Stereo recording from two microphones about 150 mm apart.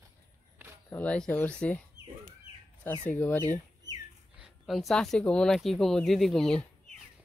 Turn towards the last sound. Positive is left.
turn(degrees=5)  # may be behind; listen again after turning